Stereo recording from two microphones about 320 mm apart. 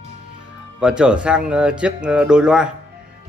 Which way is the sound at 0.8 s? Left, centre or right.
Centre.